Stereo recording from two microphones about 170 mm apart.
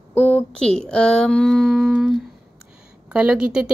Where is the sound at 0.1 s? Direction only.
10° left (ahead or behind).